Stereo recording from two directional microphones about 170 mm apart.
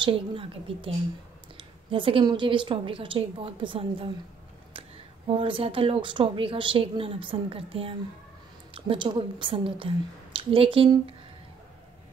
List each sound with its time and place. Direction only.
0.0 s speech: 30° right (ahead or behind)